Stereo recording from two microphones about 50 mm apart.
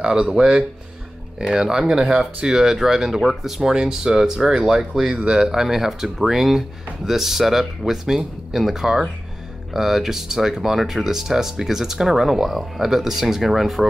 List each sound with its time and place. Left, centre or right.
0.0 s speech: centre